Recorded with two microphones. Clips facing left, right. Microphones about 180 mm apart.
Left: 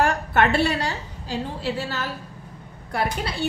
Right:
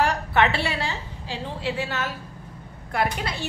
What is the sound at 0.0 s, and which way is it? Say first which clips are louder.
A woman's voice: left 1 dB; 50° left (ahead or behind).